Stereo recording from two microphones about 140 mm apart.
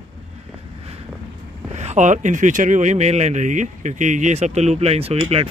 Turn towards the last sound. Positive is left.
turn(degrees=-45)  # may be behind; listen again after turning